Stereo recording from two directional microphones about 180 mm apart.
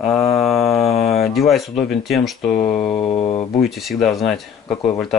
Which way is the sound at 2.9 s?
30° left (ahead or behind).